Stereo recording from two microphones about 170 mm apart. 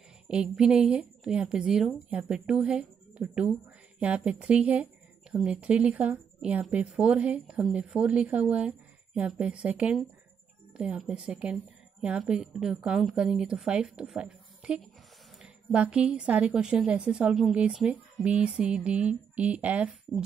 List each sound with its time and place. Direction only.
0.3 s a woman's voice: 5° right (ahead or behind)